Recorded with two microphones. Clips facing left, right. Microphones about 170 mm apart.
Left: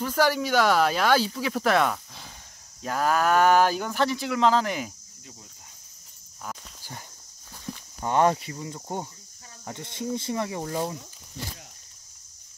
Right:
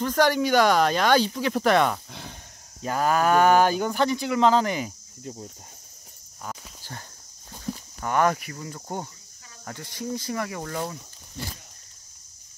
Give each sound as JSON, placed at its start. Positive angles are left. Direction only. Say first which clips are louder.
{"t": 0.0, "sound": "speech", "louder": "right 2 dB", "side_deg": 5}
{"t": 5.2, "sound": "speech", "louder": "right 12 dB", "side_deg": -40}
{"t": 6.8, "sound": "walk", "louder": "right 1 dB", "side_deg": 10}
{"t": 8.0, "sound": "speech", "louder": "left 1 dB", "side_deg": 25}